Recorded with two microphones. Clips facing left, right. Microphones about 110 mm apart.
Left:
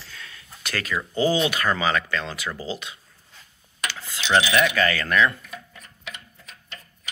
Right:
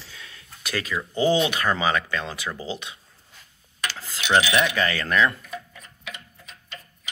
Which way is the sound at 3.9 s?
35° right (ahead or behind).